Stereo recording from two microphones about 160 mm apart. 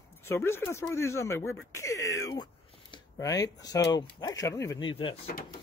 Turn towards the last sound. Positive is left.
turn(degrees=30)  # may be behind; listen again after turning